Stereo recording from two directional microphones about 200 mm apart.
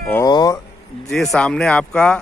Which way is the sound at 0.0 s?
10° left (ahead or behind).